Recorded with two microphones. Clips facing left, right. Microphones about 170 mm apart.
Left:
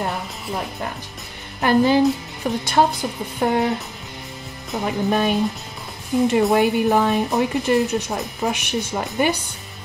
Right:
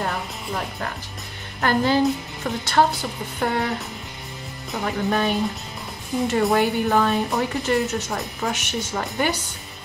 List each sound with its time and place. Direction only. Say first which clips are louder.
0.0 s speech: left 1 dB; 10° left (ahead or behind)
4.7 s speech: left 2 dB; 15° left (ahead or behind)
6.5 s speech: left 3 dB; 15° left (ahead or behind)